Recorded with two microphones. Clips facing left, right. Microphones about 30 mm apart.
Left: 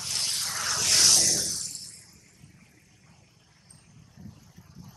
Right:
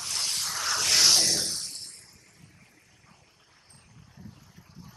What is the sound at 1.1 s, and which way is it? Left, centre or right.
Music, right.